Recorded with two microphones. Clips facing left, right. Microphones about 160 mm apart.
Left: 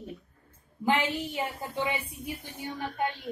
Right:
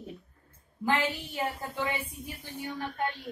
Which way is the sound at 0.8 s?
20° left (ahead or behind).